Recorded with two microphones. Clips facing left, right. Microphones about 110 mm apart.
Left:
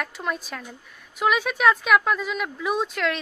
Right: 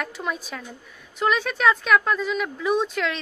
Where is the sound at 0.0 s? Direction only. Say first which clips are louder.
Even; centre (ahead or behind).